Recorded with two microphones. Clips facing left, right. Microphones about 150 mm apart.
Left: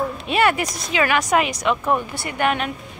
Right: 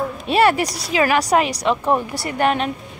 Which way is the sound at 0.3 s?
35° right (ahead or behind).